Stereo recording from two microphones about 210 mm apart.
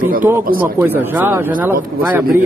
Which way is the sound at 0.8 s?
10° right (ahead or behind).